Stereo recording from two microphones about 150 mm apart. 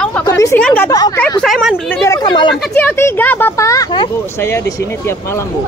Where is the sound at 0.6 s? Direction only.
5° left (ahead or behind).